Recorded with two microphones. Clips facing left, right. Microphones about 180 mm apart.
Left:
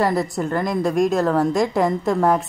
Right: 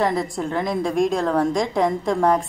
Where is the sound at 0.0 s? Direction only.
Centre (ahead or behind).